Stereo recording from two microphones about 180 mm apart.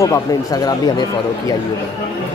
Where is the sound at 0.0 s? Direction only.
20° left (ahead or behind).